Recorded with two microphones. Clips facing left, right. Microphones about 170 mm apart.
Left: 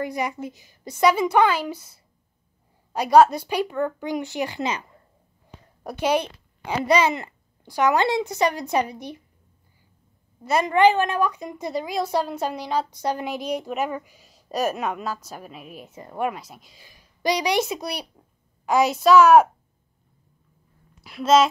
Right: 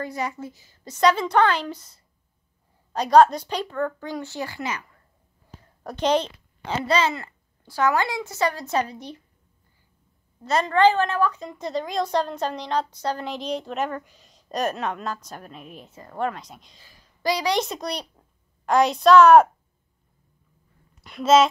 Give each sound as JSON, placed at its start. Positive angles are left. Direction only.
{"t": 0.0, "sound": "a woman's voice", "side_deg": 15}
{"t": 5.9, "sound": "a woman's voice", "side_deg": 10}
{"t": 10.4, "sound": "a woman's voice", "side_deg": 10}
{"t": 16.8, "sound": "a sound", "side_deg": 15}
{"t": 17.6, "sound": "a woman's voice", "side_deg": 5}
{"t": 21.0, "sound": "a woman's voice", "side_deg": 0}